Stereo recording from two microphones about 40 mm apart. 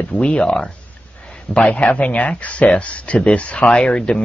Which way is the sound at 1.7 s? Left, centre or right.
Left.